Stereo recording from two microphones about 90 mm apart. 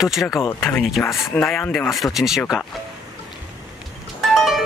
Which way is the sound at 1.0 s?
25° left (ahead or behind).